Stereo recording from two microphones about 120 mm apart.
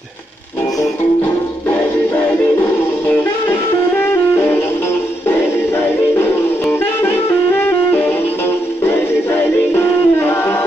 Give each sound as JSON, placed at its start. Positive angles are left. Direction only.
{"t": 4.1, "sound": "music", "side_deg": 20}
{"t": 7.6, "sound": "music", "side_deg": 15}